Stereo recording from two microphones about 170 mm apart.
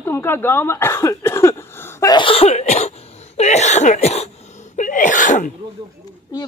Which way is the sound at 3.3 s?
40° left (ahead or behind).